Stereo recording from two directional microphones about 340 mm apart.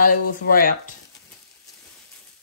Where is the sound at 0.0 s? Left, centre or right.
Left.